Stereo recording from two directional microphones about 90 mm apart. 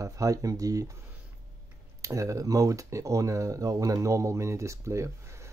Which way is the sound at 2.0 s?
35° right (ahead or behind).